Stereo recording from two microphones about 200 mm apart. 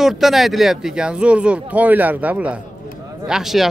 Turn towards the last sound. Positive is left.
turn(degrees=0)  # may be behind; listen again after turning